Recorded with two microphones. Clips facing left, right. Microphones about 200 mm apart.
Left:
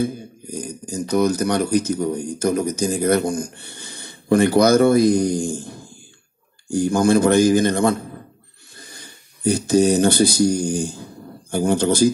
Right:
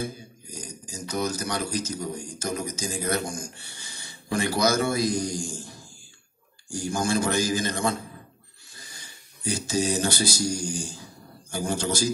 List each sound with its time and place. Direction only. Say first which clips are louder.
0.0 s a man's voice: left 10 dB; 55° left (ahead or behind)